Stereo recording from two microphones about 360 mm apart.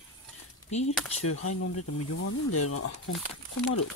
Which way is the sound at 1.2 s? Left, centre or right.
Left.